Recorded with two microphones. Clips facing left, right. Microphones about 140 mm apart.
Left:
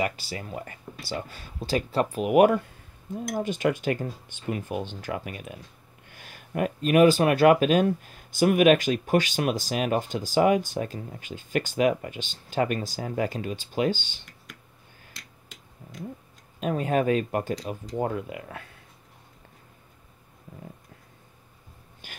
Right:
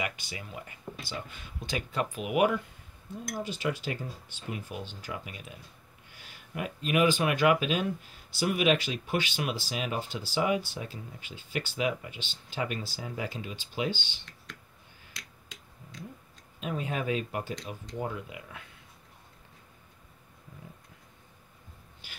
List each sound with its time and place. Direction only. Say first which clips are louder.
0.0 s speech: left 7 dB; 35° left (ahead or behind)
16.5 s speech: left 9 dB; 45° left (ahead or behind)